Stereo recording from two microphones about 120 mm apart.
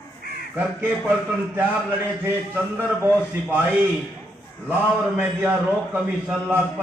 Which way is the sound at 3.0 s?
15° right (ahead or behind).